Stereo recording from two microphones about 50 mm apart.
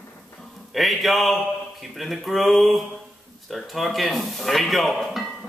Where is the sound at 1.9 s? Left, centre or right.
Centre.